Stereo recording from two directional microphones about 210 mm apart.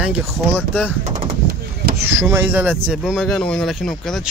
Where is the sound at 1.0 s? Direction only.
35° right (ahead or behind).